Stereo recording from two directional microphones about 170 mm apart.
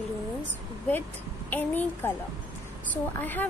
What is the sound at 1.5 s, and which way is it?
Speech, 10° left (ahead or behind).